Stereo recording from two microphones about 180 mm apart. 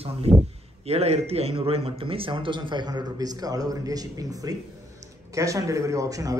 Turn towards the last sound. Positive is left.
turn(degrees=-20)  # may be behind; listen again after turning